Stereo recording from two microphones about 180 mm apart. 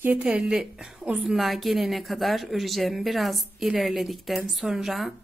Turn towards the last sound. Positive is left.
turn(degrees=0)  # may be behind; listen again after turning